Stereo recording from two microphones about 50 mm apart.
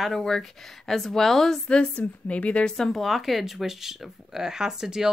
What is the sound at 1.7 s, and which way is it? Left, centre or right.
A woman's voice, left.